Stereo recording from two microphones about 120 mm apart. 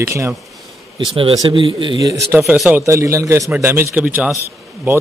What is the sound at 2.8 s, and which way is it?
A man's voice, 25° right (ahead or behind).